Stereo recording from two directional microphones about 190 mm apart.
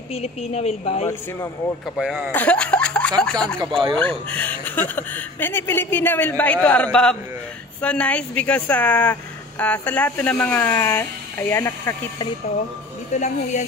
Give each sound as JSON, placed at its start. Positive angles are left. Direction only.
{"t": 0.1, "sound": "a woman's voice", "side_deg": 35}
{"t": 2.0, "sound": "speech", "side_deg": -5}
{"t": 2.3, "sound": "speech", "side_deg": 5}
{"t": 3.5, "sound": "speech", "side_deg": -25}
{"t": 4.0, "sound": "a woman's voice", "side_deg": 10}
{"t": 13.1, "sound": "a woman's voice", "side_deg": 40}